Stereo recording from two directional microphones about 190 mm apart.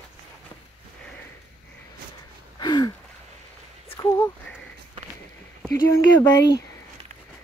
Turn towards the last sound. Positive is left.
turn(degrees=20)  # may be behind; listen again after turning